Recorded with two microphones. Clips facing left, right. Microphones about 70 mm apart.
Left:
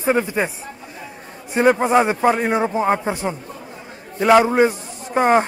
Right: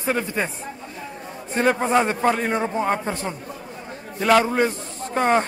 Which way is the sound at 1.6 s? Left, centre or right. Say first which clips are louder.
Left 4 dB; centre.